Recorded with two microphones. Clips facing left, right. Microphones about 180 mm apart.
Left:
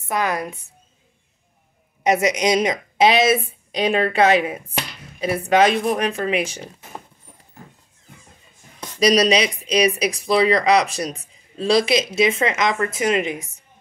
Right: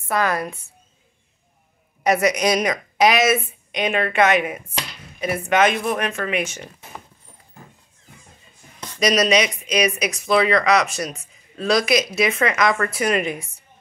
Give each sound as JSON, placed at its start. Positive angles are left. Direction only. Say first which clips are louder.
{"t": 0.1, "sound": "a woman's voice", "louder": "right 1 dB", "side_deg": 15}
{"t": 2.0, "sound": "speech", "louder": "even", "side_deg": 20}
{"t": 9.0, "sound": "speech", "louder": "left 2 dB", "side_deg": 30}